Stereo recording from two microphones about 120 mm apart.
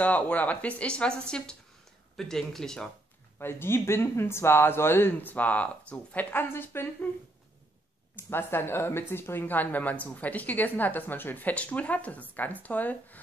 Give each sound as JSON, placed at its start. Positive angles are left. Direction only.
{"t": 0.0, "sound": "speech", "side_deg": 15}
{"t": 3.3, "sound": "speech", "side_deg": 20}
{"t": 8.2, "sound": "speech", "side_deg": 20}